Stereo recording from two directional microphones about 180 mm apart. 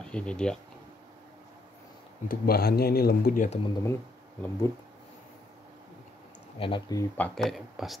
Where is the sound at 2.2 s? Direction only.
60° left (ahead or behind).